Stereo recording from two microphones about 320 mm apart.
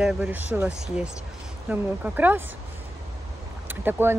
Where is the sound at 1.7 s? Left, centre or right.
Centre.